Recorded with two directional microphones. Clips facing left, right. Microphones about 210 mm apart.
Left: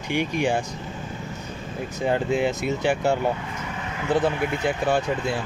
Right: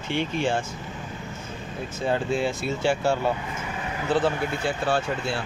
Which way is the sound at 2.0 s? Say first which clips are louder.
Left 2 dB; 15° left (ahead or behind).